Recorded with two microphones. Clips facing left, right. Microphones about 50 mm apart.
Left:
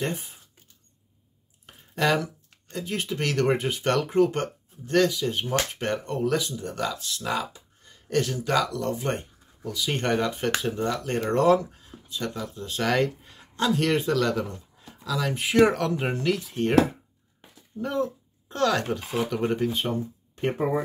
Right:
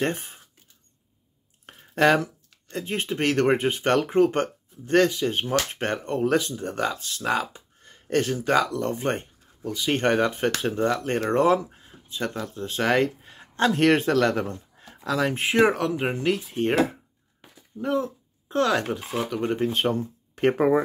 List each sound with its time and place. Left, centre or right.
0.0 s speech: right
1.7 s a sound: right
2.7 s speech: right
15.5 s speech: centre
17.7 s speech: centre
19.7 s speech: right